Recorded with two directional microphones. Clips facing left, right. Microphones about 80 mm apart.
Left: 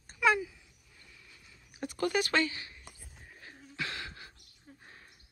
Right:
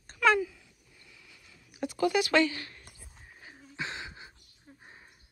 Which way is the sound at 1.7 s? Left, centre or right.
Left.